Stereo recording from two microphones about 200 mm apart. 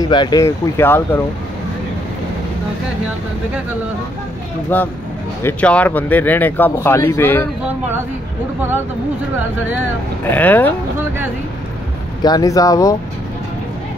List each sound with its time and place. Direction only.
0.0 s speech: 20° left (ahead or behind)
4.7 s speech: 10° left (ahead or behind)
10.3 s speech: 10° left (ahead or behind)
12.2 s speech: 20° left (ahead or behind)